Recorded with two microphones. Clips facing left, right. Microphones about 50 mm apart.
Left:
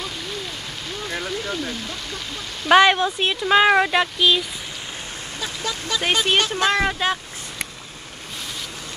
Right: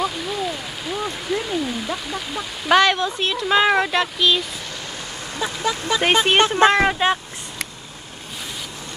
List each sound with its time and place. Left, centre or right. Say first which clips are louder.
0.0 s rain: right 7 dB; centre
2.7 s speech: left 2 dB; centre
5.4 s speech: right 6 dB; right